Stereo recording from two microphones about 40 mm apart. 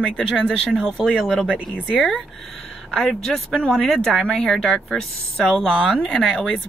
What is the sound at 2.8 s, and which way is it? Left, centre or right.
Speech, left.